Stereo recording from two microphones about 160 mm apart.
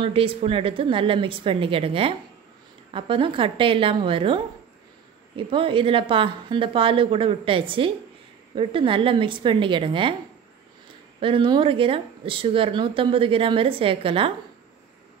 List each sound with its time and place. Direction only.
0.0 s speech: 35° right (ahead or behind)
11.1 s speech: 35° right (ahead or behind)